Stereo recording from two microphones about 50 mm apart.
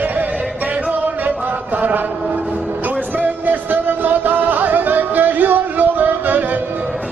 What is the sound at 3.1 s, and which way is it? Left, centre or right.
Music, right.